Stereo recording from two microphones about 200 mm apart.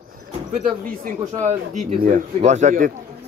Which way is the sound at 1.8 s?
40° right (ahead or behind).